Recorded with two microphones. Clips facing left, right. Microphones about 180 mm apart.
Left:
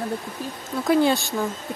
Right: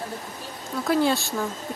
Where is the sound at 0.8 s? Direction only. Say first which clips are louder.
Left 3 dB; centre (ahead or behind).